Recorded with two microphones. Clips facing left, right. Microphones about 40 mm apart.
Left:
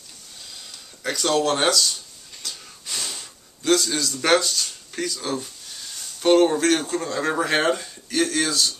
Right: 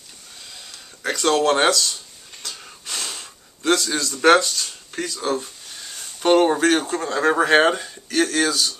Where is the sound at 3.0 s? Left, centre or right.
Centre.